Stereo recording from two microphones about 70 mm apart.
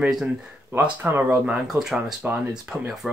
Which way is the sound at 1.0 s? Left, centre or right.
Right.